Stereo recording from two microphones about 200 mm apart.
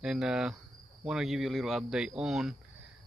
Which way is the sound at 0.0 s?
5° right (ahead or behind).